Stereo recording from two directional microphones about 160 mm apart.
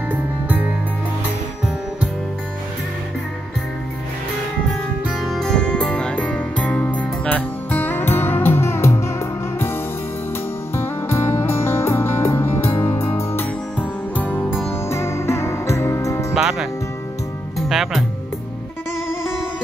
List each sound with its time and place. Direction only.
5.0 s music: centre (ahead or behind); by 16.3 s 20° left (ahead or behind)
16.3 s music: 5° right (ahead or behind)